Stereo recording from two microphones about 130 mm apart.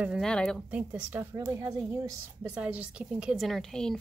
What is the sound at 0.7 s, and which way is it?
Speech, 10° right (ahead or behind).